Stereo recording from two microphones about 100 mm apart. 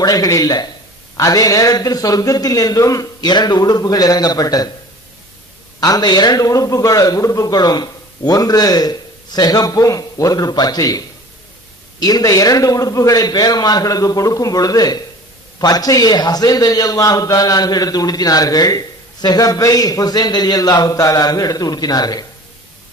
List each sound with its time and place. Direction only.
0.0 s a man's voice: 40° left (ahead or behind)
5.8 s a man's voice: 40° left (ahead or behind)